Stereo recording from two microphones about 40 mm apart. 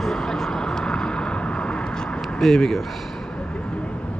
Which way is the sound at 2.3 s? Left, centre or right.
Centre.